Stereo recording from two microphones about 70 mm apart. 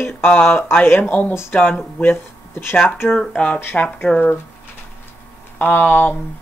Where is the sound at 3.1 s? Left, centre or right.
Centre.